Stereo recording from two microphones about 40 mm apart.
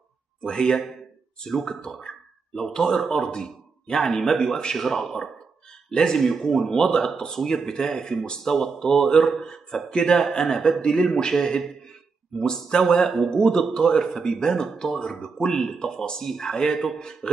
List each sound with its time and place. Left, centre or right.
0.4 s speech: centre
6.7 s speech: centre